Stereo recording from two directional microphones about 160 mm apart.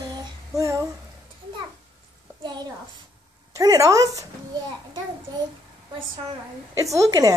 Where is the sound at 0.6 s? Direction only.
20° right (ahead or behind).